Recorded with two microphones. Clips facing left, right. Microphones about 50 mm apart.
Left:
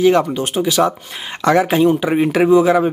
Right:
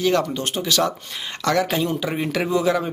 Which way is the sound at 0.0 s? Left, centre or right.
Centre.